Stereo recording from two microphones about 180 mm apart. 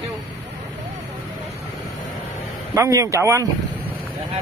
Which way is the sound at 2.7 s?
15° right (ahead or behind).